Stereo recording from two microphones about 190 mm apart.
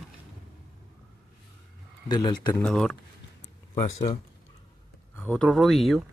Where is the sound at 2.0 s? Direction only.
20° left (ahead or behind).